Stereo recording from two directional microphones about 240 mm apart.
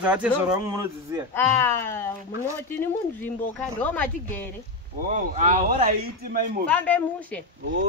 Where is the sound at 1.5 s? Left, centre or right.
Centre.